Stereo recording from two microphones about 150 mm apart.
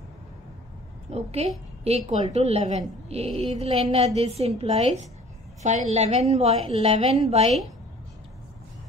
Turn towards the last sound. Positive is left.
turn(degrees=-45)  # may be behind; listen again after turning